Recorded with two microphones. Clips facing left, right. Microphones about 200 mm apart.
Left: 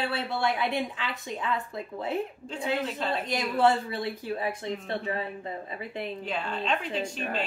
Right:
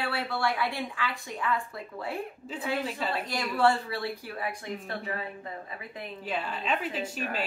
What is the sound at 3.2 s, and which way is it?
A woman's voice, 20° left (ahead or behind).